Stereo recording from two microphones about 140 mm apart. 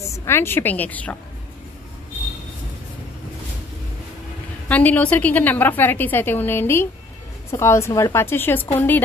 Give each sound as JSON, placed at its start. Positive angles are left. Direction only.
{"t": 0.0, "sound": "a woman's voice", "side_deg": 20}
{"t": 4.6, "sound": "a woman's voice", "side_deg": 10}